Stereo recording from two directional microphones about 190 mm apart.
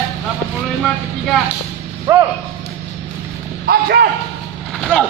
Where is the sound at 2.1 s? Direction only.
15° right (ahead or behind).